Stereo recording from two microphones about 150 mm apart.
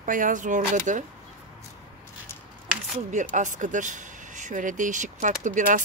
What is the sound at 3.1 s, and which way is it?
Speech, 55° right (ahead or behind).